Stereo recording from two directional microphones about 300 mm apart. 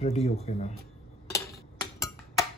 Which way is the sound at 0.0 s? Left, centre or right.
Left.